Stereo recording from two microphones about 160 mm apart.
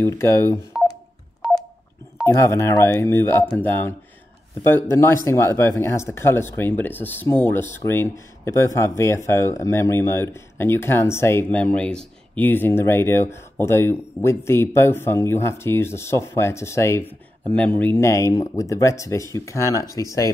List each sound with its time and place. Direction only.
0.0 s speech: 15° left (ahead or behind)
2.2 s speech: 15° left (ahead or behind)